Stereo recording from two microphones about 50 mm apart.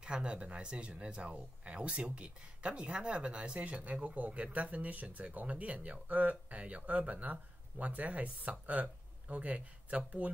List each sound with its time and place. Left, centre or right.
0.0 s speech: right